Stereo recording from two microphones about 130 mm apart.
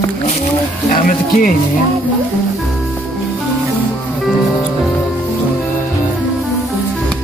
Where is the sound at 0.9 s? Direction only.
90° left.